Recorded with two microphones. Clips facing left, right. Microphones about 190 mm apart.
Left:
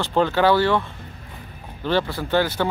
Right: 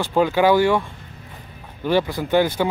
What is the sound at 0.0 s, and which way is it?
Speech, 10° right (ahead or behind).